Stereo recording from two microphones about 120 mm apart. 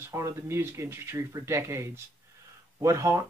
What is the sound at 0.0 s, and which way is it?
Speech, 20° right (ahead or behind).